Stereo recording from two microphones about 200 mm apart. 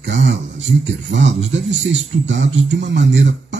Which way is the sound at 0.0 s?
65° right (ahead or behind).